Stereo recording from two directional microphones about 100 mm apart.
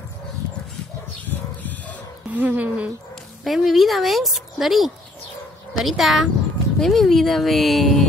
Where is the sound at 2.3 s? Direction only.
15° right (ahead or behind).